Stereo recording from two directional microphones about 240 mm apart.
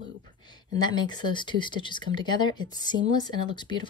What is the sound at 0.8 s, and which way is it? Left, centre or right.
A woman's voice, centre.